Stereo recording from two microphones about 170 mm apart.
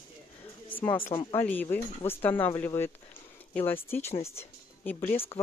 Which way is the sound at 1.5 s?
10° left (ahead or behind).